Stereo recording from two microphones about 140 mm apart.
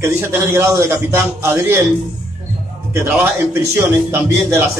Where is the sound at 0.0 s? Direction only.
20° right (ahead or behind).